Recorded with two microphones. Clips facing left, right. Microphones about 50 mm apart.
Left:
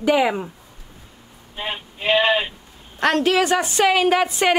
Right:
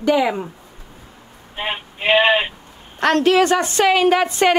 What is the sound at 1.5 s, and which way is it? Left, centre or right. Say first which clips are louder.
Speech: right 3 dB; right.